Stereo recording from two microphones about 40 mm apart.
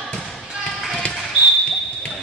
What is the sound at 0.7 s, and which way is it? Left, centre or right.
Music, centre.